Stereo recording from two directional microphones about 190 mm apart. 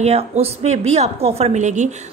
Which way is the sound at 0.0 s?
35° right (ahead or behind).